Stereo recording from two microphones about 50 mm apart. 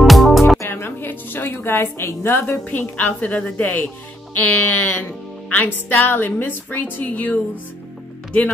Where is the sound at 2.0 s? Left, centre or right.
Left.